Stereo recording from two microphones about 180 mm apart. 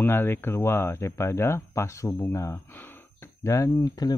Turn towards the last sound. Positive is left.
turn(degrees=20)  # may be behind; listen again after turning